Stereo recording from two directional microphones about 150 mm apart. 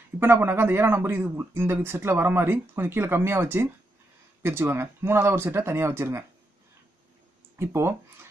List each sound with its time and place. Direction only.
0.2 s speech: 15° right (ahead or behind)
7.5 s speech: 15° right (ahead or behind)